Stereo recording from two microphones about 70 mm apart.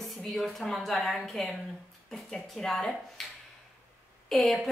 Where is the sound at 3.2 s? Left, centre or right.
Centre.